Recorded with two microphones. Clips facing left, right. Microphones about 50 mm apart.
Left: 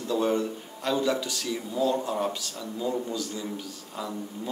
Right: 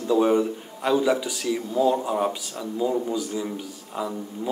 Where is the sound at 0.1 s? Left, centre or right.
Centre.